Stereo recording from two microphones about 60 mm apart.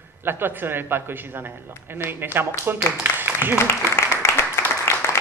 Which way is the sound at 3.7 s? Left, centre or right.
Left.